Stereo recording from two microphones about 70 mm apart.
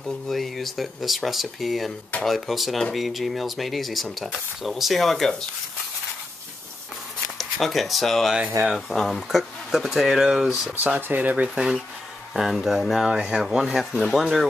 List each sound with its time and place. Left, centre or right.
0.0 s speech: centre
7.3 s speech: centre
10.8 s speech: right; by 14.5 s centre